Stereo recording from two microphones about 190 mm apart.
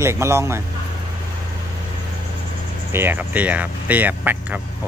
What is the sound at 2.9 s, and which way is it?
Speech, 10° right (ahead or behind).